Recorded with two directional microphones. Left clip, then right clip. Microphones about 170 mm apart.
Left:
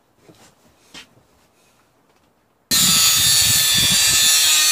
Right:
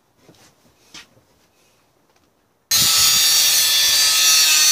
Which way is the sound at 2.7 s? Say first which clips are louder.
Even; centre (ahead or behind).